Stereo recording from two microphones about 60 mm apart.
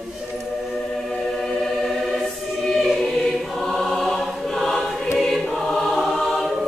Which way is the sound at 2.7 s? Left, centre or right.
Centre.